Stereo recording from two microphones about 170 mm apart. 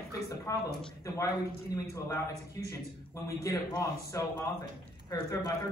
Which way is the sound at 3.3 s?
20° left (ahead or behind).